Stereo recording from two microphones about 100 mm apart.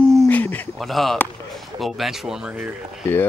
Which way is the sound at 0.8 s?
Centre (ahead or behind).